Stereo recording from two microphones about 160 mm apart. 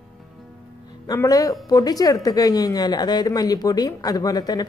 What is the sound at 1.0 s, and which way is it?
A woman's voice, 20° left (ahead or behind).